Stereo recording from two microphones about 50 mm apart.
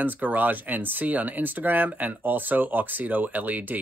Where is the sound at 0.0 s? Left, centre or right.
Right.